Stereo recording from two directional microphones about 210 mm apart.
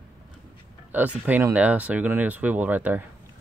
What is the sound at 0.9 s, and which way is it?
Speech, 5° right (ahead or behind).